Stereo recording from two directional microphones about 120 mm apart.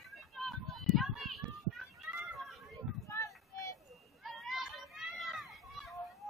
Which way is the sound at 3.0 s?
25° left (ahead or behind).